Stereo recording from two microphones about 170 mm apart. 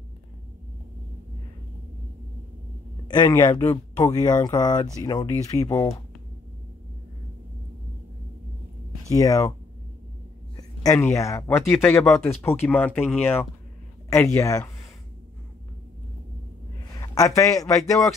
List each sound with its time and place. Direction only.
3.1 s speech: 25° left (ahead or behind)
9.1 s speech: 20° left (ahead or behind)
10.5 s speech: 20° left (ahead or behind)
17.0 s a man's voice: 20° left (ahead or behind)